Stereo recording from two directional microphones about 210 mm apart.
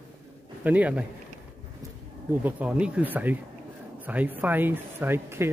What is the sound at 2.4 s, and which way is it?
Speech, 5° right (ahead or behind).